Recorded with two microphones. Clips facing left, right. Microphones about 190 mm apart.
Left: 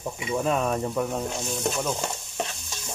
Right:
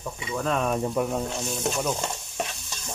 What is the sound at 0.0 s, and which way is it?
Speech, 20° left (ahead or behind).